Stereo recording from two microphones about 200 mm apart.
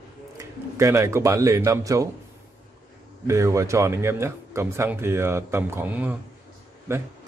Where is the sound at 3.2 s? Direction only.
15° right (ahead or behind).